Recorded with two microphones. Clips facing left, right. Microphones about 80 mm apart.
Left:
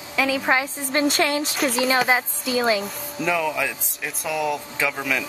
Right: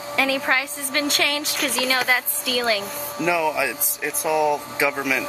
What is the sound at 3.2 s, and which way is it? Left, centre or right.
Speech, centre.